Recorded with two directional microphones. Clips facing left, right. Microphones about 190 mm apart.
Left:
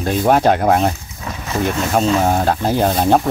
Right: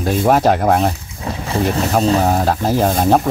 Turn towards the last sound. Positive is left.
turn(degrees=0)  # may be behind; listen again after turning